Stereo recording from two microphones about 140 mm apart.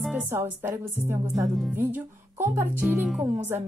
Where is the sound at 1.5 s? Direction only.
Centre (ahead or behind).